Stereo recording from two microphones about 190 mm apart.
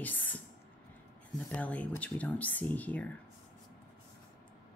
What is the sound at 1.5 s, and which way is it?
Speech, 5° left (ahead or behind).